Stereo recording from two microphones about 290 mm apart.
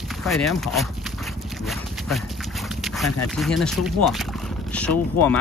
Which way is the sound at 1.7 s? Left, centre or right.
Centre.